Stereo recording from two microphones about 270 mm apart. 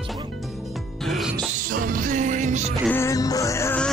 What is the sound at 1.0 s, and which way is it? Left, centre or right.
Speech, centre.